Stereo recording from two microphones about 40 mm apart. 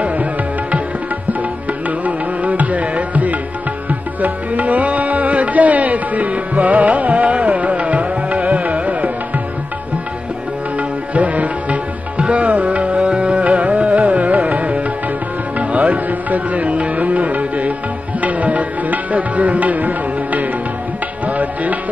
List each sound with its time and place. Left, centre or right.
0.0 s music: right
10.8 s music: right